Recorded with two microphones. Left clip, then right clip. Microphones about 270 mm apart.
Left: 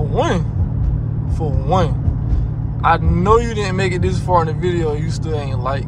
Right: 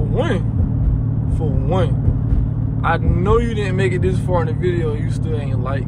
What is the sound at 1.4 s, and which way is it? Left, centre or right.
Speech, centre.